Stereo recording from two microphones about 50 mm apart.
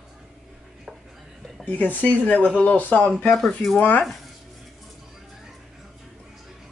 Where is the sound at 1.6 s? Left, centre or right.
Left.